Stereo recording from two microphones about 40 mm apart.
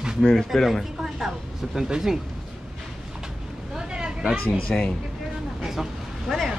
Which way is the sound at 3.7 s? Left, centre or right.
Right.